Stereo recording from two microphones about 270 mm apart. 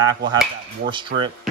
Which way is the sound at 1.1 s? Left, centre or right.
Right.